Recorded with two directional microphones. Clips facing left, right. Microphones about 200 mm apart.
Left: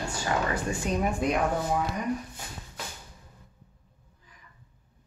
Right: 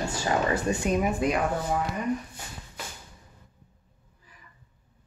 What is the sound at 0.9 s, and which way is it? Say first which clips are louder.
Speech: right 1 dB; 5° right (ahead or behind).